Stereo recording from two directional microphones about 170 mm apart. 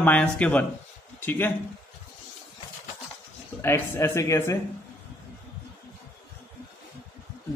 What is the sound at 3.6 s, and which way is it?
A man's voice, 15° left (ahead or behind).